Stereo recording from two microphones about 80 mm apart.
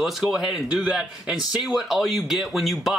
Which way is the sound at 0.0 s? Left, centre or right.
Centre.